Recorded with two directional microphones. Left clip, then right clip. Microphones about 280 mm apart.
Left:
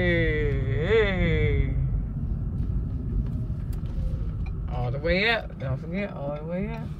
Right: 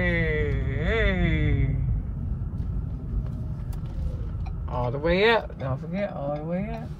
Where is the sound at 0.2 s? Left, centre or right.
Centre.